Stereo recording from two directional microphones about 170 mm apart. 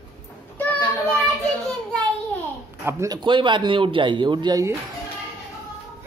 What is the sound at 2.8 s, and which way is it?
A man's voice, 20° right (ahead or behind).